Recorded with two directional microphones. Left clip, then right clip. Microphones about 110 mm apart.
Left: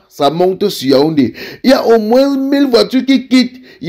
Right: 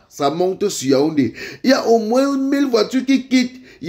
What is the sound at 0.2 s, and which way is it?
Speech, 40° left (ahead or behind).